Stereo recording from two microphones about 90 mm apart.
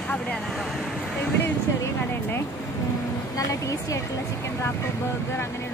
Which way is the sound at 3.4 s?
40° left (ahead or behind).